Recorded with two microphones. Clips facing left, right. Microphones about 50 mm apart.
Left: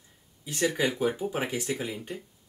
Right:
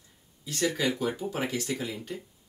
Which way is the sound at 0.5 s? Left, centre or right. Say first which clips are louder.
Left 1 dB; left.